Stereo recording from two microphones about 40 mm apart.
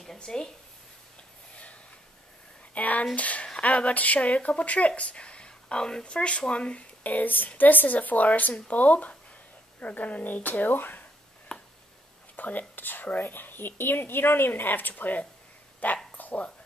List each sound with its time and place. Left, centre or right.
0.2 s speech: centre
2.7 s speech: left; by 6.0 s centre
6.0 s speech: left
7.0 s speech: left
11.5 s a sound: left
12.4 s speech: left
13.2 s speech: left
16.2 s a sound: left